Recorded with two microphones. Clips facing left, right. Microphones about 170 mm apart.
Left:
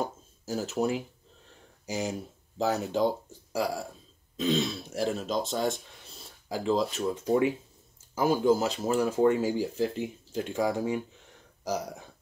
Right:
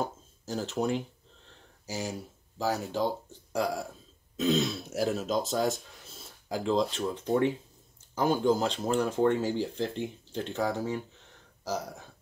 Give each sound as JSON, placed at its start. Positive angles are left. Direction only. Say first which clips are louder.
{"t": 0.0, "sound": "a sound", "louder": "left 1 dB", "side_deg": 10}
{"t": 1.9, "sound": "speech", "louder": "left 3 dB", "side_deg": 20}
{"t": 3.5, "sound": "speech", "louder": "even", "side_deg": 5}